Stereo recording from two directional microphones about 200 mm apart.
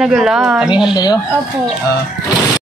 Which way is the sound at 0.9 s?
20° left (ahead or behind).